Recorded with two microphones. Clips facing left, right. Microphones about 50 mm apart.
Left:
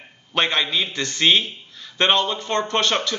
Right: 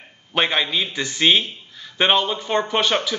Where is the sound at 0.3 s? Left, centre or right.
Centre.